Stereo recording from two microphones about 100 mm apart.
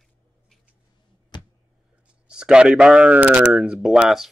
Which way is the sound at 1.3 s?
45° left (ahead or behind).